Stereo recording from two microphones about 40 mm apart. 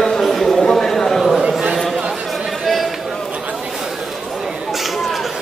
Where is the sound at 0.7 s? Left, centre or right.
Centre.